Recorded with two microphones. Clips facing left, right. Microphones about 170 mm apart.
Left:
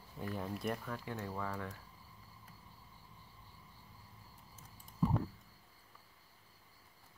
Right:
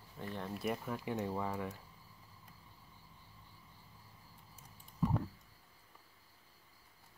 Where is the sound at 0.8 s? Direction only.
15° right (ahead or behind).